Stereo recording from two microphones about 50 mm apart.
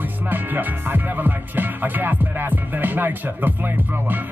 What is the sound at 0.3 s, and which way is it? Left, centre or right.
Music, right.